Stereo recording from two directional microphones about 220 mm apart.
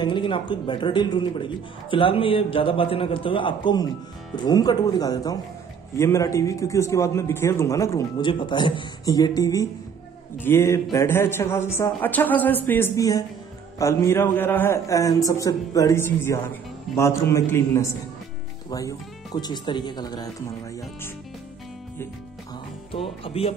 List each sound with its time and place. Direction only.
0.0 s a man's voice: 20° left (ahead or behind)
23.2 s speech: 25° left (ahead or behind)